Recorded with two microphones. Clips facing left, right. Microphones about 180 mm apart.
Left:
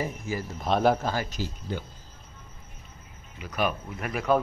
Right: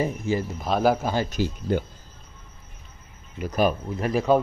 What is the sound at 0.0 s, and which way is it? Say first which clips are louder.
Speech: right 6 dB; 25° right (ahead or behind).